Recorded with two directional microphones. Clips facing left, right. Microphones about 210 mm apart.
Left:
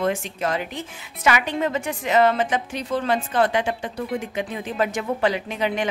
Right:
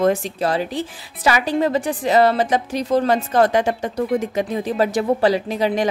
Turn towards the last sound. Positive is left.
turn(degrees=-35)  # may be behind; listen again after turning